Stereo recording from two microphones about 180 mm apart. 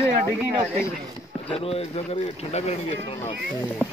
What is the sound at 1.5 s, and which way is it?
Speech, 35° left (ahead or behind).